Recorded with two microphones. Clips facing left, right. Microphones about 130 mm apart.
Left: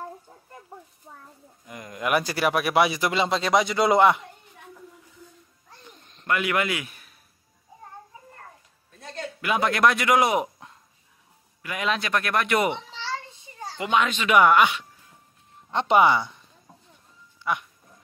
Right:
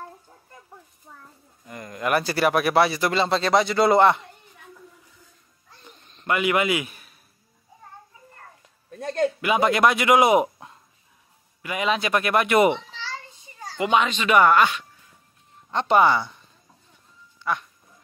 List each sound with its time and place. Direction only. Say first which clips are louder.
1.7 s a man's voice: right 1 dB; 5° left (ahead or behind)
6.2 s a man's voice: right 3 dB; 5° right (ahead or behind)
8.9 s a sound: right 12 dB; 50° right (ahead or behind)
9.4 s a man's voice: even; centre (ahead or behind)
14.0 s a man's voice: left 2 dB; 5° left (ahead or behind)
15.7 s speech: right 1 dB; 20° left (ahead or behind)
17.4 s music: right 1 dB; 15° left (ahead or behind)